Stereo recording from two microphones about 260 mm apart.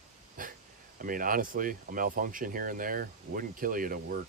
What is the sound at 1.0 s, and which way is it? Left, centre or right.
Speech, right.